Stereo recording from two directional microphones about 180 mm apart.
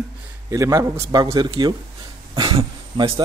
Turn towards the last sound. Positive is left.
turn(degrees=-30)  # may be behind; listen again after turning